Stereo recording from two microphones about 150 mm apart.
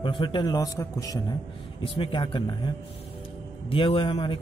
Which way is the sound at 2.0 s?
35° left (ahead or behind).